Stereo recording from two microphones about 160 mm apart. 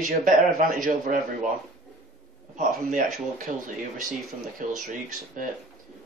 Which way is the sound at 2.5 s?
55° right (ahead or behind).